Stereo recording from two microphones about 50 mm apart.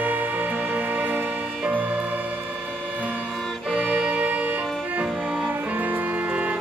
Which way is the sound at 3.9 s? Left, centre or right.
Centre.